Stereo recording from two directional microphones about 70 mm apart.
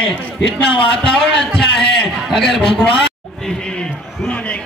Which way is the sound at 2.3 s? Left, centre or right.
Centre.